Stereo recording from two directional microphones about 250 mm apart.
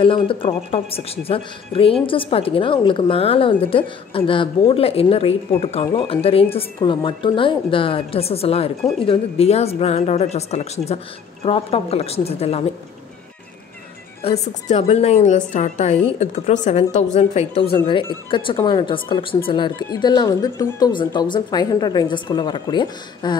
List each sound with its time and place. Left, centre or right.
0.0 s a woman's voice: left
14.2 s a woman's voice: left